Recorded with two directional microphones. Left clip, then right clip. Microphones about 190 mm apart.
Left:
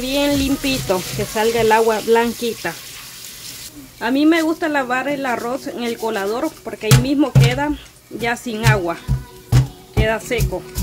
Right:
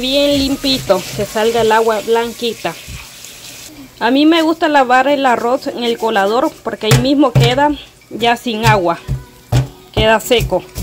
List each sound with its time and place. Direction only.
0.0 s speech: 5° left (ahead or behind)
1.8 s speech: 20° left (ahead or behind)
4.0 s speech: 5° right (ahead or behind)
9.9 s speech: 15° right (ahead or behind)